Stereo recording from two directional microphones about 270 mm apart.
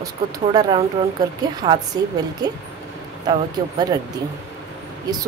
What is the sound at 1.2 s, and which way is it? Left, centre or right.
Speech, centre.